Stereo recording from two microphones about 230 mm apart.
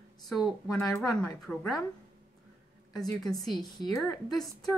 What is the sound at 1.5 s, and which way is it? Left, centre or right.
Speech, centre.